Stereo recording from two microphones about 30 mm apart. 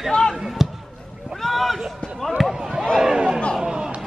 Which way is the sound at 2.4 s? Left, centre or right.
Centre.